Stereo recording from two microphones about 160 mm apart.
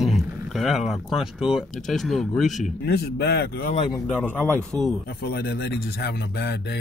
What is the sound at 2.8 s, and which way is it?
Speech, 85° left.